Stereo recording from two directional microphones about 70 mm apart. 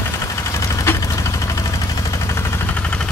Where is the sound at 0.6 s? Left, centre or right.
Left.